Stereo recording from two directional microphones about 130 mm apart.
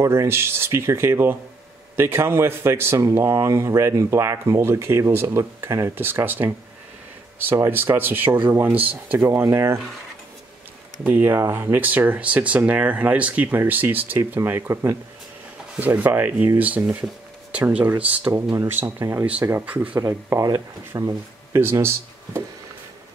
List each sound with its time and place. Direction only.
0.0 s speech: 20° right (ahead or behind)
11.1 s speech: 15° right (ahead or behind)
20.0 s speech: 20° right (ahead or behind)